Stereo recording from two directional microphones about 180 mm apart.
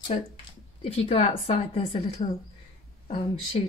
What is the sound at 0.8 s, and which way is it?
A woman's voice, 35° left (ahead or behind).